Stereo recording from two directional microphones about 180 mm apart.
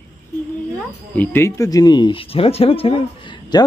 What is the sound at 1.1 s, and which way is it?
Speech, 15° left (ahead or behind).